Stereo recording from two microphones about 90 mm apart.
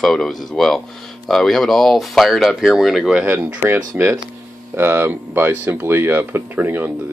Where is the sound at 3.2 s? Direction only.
25° right (ahead or behind).